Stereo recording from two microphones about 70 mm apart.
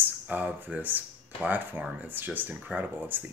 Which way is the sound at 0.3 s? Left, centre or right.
Right.